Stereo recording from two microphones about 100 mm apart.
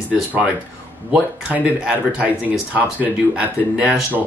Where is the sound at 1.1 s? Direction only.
15° right (ahead or behind).